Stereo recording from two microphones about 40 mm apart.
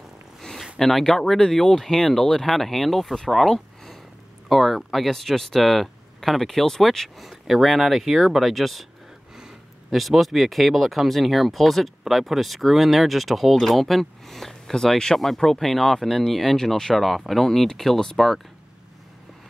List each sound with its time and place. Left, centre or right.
0.4 s a sound: centre
0.7 s speech: centre
7.2 s speech: centre
9.8 s speech: centre